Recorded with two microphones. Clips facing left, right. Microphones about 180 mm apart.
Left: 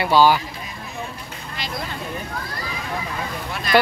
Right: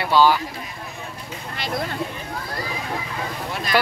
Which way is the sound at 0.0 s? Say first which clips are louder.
Left 1 dB; 5° left (ahead or behind).